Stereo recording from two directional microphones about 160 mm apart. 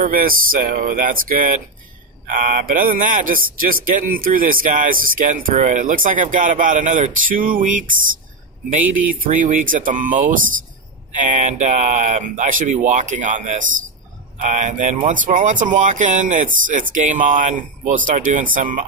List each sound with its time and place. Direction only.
0.0 s speech: 60° right (ahead or behind)
9.2 s speech: 55° right (ahead or behind)